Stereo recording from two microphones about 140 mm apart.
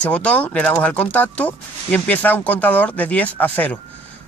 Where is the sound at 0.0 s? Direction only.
10° left (ahead or behind).